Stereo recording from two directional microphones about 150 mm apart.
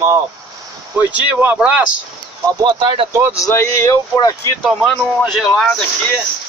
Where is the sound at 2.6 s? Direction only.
30° right (ahead or behind).